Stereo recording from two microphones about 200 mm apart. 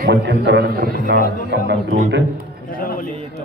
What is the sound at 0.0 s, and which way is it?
A man's voice, 55° right (ahead or behind).